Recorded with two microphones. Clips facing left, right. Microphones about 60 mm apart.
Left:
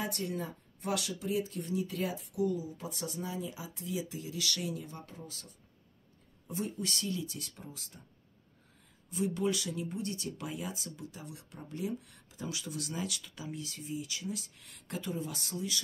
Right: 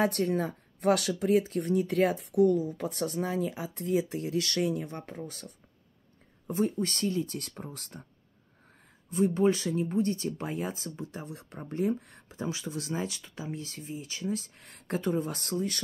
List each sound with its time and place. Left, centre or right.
0.0 s a woman's voice: right
9.1 s speech: right